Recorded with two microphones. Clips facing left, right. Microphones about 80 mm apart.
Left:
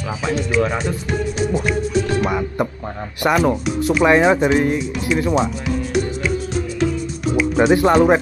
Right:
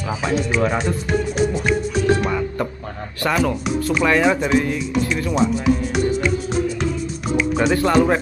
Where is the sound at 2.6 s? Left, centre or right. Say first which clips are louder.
Left 3 dB; centre.